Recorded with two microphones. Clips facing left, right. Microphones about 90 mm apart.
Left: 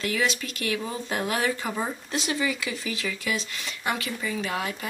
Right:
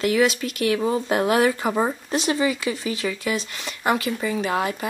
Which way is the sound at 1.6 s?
35° right (ahead or behind).